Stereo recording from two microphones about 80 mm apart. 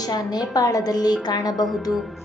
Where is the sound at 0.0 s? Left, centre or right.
Left.